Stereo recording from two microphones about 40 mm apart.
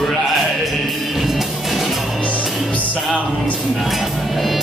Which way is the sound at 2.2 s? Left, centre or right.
Left.